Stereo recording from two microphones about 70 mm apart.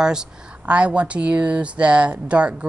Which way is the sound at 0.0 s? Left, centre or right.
Centre.